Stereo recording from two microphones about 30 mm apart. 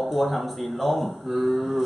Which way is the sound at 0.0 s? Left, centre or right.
Centre.